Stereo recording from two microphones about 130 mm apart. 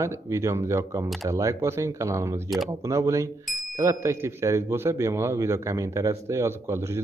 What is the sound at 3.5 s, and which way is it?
Bicycle bell, centre (ahead or behind).